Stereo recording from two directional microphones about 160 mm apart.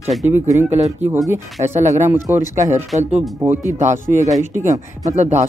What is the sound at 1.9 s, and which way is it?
Speech, 15° right (ahead or behind).